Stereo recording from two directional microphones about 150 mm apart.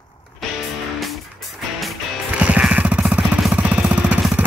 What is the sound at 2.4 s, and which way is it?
Jackhammer, 5° right (ahead or behind).